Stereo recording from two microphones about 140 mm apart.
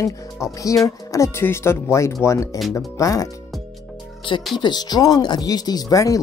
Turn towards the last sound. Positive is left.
turn(degrees=25)  # may be behind; listen again after turning